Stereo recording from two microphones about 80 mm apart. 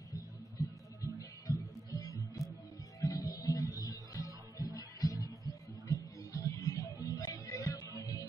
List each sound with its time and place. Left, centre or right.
0.6 s music: left